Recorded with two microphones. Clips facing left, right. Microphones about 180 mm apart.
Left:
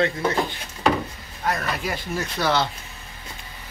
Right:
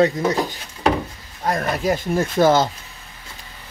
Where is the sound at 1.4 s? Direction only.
35° right (ahead or behind).